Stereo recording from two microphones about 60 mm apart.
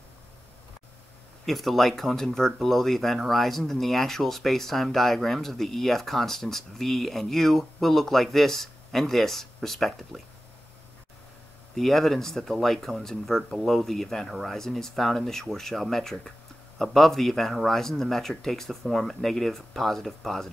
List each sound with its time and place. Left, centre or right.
1.4 s speech: centre
11.7 s speech: centre